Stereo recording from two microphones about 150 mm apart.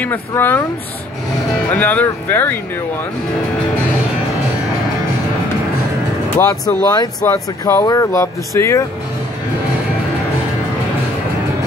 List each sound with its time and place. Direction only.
0.0 s speech: 15° left (ahead or behind)
1.7 s speech: 10° left (ahead or behind)
6.3 s speech: 25° left (ahead or behind)